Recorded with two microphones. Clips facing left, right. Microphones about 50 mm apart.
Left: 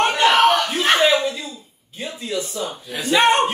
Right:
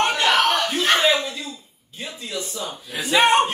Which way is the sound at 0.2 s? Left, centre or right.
Centre.